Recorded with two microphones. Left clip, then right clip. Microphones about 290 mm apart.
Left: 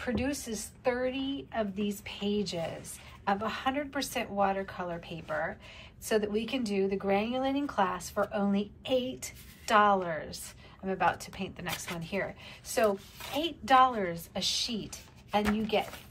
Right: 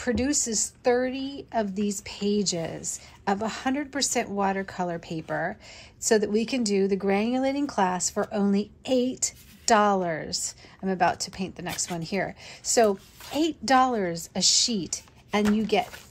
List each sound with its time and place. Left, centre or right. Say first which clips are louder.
0.0 s speech: right 7 dB; right